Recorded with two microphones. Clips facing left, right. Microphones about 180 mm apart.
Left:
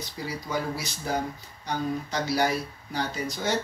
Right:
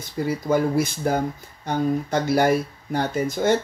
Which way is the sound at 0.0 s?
50° right (ahead or behind).